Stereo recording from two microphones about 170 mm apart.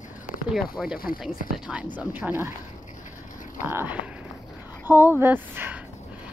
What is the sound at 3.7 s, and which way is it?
Speech, 10° right (ahead or behind).